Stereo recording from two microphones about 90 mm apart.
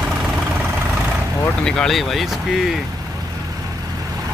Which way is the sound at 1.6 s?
10° left (ahead or behind).